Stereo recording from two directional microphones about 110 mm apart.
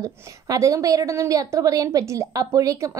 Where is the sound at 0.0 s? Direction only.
30° right (ahead or behind).